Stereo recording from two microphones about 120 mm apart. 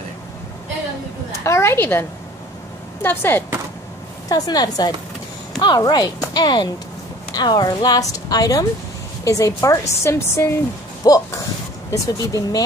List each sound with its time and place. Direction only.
1.4 s a woman's voice: 25° left (ahead or behind)
4.3 s a woman's voice: 30° left (ahead or behind)